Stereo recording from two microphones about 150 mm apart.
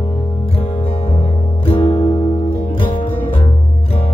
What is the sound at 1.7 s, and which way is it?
Music, 40° left (ahead or behind).